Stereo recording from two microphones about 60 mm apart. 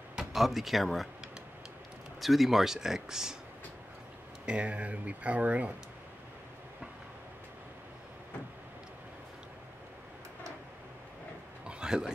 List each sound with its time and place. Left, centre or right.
0.1 s speech: centre
2.1 s speech: centre
4.5 s speech: right
11.6 s a sound: centre